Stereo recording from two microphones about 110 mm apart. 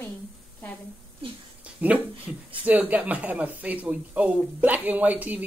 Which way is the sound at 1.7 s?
10° right (ahead or behind).